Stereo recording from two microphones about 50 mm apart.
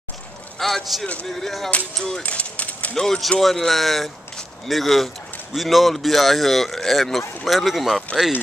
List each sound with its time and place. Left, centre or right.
0.6 s a man's voice: centre
2.2 s a sound: left
2.9 s speech: centre